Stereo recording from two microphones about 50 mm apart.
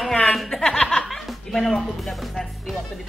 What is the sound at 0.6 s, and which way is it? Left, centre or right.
Chuckle, centre.